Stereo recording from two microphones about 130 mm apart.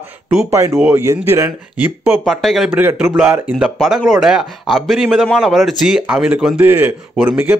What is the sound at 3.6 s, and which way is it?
A man's voice, centre (ahead or behind).